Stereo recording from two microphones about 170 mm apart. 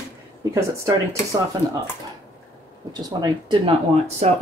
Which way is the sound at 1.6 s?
20° right (ahead or behind).